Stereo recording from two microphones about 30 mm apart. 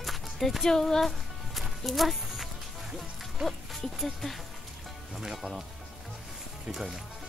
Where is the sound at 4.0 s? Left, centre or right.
Centre.